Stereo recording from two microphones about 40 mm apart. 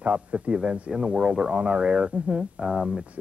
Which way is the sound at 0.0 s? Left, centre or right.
Right.